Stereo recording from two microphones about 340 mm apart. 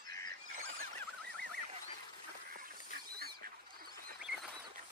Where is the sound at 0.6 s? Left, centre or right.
Right.